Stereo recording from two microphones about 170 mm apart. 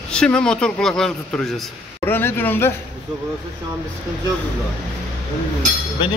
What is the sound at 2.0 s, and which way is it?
Speech, 15° left (ahead or behind).